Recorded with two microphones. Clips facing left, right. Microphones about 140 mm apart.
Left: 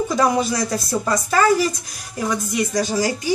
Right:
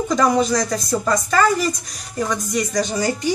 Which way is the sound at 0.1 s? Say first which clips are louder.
Right 4 dB; 5° left (ahead or behind).